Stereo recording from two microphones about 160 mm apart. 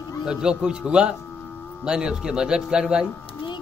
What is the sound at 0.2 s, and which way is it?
Speech, 5° right (ahead or behind).